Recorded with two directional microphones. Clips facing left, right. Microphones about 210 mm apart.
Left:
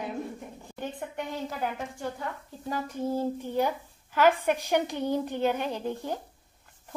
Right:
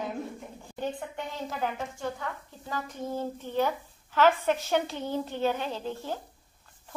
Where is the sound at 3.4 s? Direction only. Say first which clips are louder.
Left 1 dB; 10° left (ahead or behind).